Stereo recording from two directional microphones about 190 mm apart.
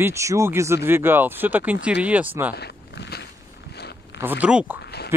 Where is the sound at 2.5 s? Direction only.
60° left (ahead or behind).